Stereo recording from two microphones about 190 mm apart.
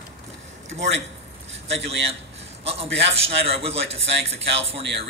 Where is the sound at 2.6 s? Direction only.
30° right (ahead or behind).